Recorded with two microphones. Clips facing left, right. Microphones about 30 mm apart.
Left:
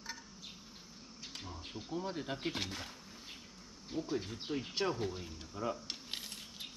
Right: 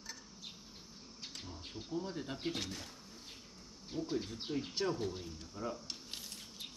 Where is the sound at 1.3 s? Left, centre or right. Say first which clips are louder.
Left 3 dB; left.